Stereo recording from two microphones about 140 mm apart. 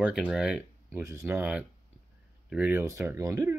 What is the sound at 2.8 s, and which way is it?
Speech, 20° right (ahead or behind).